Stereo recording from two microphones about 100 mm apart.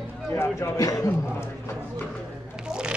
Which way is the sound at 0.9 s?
35° left (ahead or behind).